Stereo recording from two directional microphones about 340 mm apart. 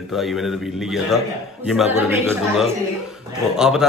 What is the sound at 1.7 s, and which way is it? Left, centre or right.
A man's voice, centre.